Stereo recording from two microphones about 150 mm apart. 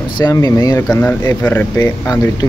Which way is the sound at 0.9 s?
10° left (ahead or behind).